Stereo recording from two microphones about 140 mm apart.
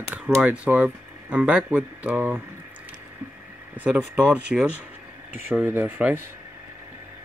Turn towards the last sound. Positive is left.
turn(degrees=-10)  # may be behind; listen again after turning